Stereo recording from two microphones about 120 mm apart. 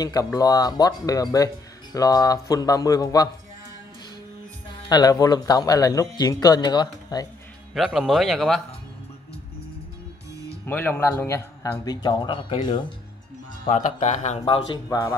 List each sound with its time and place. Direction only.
0.0 s speech: 30° left (ahead or behind)
4.8 s speech: 35° left (ahead or behind)
7.7 s speech: 5° right (ahead or behind)
10.7 s speech: 15° left (ahead or behind); by 12.8 s 45° left (ahead or behind)
13.7 s speech: 70° left (ahead or behind)
14.4 s speech: 45° left (ahead or behind)
14.9 s speech: 30° left (ahead or behind)